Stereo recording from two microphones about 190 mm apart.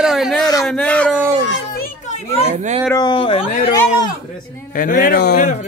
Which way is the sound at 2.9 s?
25° left (ahead or behind).